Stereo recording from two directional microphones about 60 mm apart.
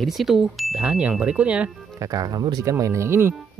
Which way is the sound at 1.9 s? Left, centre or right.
Right.